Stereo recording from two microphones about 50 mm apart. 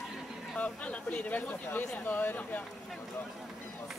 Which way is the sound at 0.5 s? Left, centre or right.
Left.